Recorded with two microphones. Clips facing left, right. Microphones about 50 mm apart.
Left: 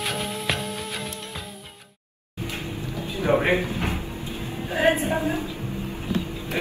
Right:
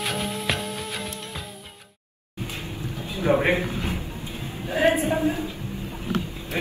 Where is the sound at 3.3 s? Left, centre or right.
Centre.